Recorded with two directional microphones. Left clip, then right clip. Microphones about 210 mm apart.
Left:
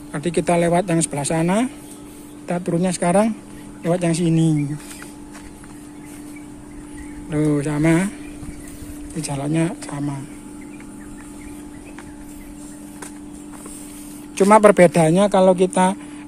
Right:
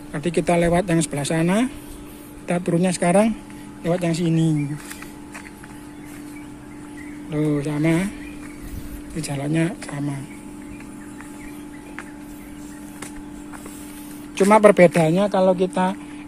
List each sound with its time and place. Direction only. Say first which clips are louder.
0.1 s speech: left 1 dB; centre (ahead or behind)
3.8 s speech: left 2 dB; 10° left (ahead or behind)
7.2 s speech: left 3 dB; 15° left (ahead or behind)
9.2 s speech: left 1 dB; centre (ahead or behind)
14.3 s speech: left 2 dB; 10° left (ahead or behind)